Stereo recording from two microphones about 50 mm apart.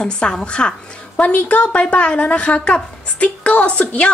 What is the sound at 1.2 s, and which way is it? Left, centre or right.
A woman's voice, left.